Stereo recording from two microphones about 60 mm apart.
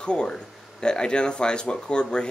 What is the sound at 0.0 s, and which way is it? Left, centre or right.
Speech, centre.